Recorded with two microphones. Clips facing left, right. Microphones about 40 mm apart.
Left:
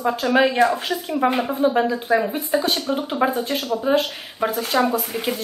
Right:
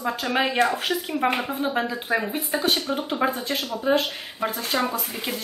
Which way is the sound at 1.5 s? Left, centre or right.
Centre.